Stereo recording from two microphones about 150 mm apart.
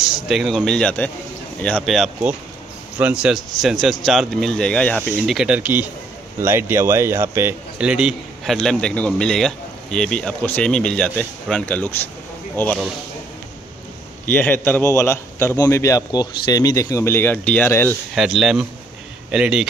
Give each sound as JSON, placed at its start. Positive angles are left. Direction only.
{"t": 0.0, "sound": "a man's voice", "side_deg": 0}
{"t": 3.0, "sound": "a man's voice", "side_deg": -5}
{"t": 5.2, "sound": "a man's voice", "side_deg": -5}
{"t": 14.2, "sound": "a man's voice", "side_deg": 10}
{"t": 18.1, "sound": "a man's voice", "side_deg": -5}